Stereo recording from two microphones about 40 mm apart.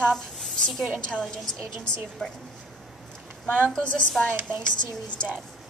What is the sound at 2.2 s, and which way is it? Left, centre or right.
Speech, left.